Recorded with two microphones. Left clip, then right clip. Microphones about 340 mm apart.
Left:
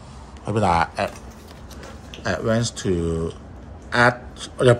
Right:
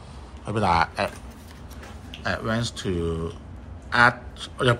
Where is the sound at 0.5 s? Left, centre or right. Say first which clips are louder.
Left 2 dB; centre.